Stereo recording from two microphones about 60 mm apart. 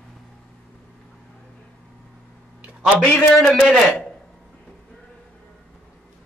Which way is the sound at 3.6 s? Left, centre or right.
Centre.